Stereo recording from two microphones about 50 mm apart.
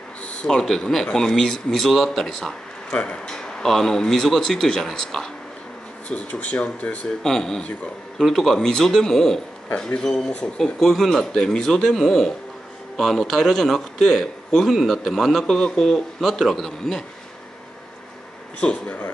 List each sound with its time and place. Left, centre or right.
0.6 s speech: centre
2.9 s speech: centre
6.0 s speech: left
7.2 s speech: centre
10.6 s speech: centre
15.4 s speech: centre
16.2 s speech: centre
18.6 s speech: left